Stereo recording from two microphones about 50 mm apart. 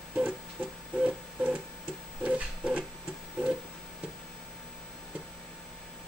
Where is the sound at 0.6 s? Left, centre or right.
Centre.